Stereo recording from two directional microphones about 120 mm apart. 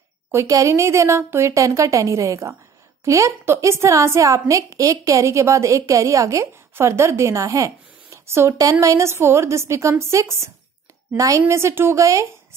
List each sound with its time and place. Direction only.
0.3 s a woman's voice: 25° right (ahead or behind)